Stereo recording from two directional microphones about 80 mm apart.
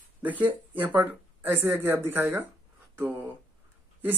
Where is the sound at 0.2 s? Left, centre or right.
Right.